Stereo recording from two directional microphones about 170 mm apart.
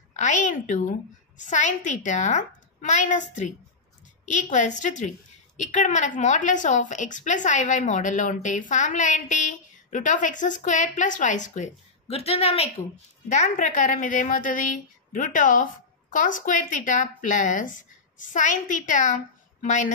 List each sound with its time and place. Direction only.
0.1 s a woman's voice: 45° left (ahead or behind)
13.3 s a woman's voice: 45° left (ahead or behind)